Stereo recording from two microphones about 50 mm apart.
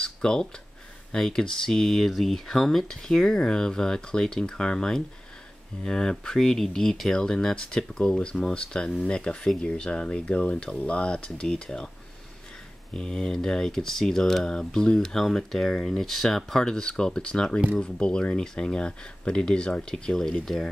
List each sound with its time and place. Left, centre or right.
0.0 s a sound: centre
1.1 s speech: centre
12.9 s speech: centre